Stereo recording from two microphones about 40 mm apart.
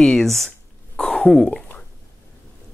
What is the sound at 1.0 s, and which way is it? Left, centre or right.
Speech, left.